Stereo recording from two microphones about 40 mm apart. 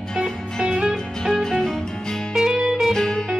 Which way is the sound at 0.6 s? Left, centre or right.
Centre.